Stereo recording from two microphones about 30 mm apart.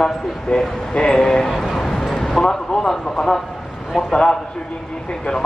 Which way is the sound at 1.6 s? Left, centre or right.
Centre.